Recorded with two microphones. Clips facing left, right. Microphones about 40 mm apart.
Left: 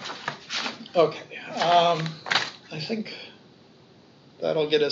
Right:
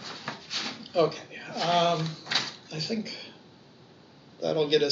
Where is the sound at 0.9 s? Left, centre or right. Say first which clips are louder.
Left 4 dB; left.